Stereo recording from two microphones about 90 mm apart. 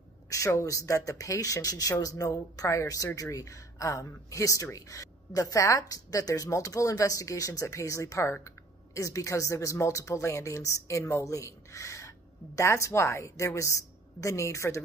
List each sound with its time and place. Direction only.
0.5 s a woman's voice: 35° left (ahead or behind)